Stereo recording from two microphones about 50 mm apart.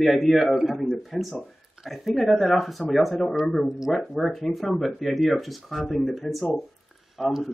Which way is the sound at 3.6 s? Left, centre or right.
Centre.